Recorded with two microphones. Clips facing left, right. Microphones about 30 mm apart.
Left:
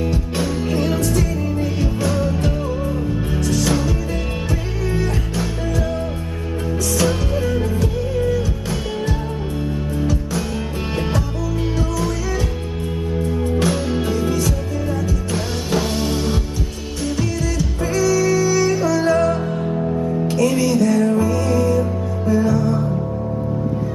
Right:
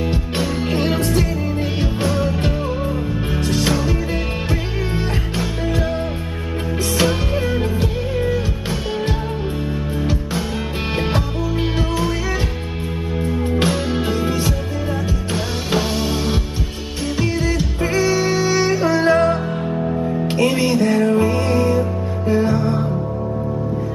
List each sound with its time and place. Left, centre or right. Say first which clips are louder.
0.7 s music: right 1 dB; right
2.0 s music: right 1 dB; right
3.3 s music: right 1 dB; right
7.1 s music: even; right
13.2 s music: right 1 dB; right
15.3 s music: right 1 dB; centre
17.2 s music: right 4 dB; right
19.7 s music: right 1 dB; centre
20.2 s music: even; right